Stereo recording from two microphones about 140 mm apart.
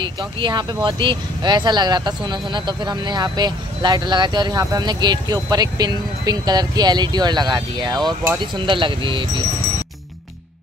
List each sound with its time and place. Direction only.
0.0 s speech: 35° right (ahead or behind)